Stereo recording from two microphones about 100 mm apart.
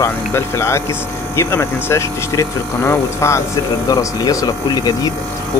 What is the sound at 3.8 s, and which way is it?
Speech, 40° left (ahead or behind).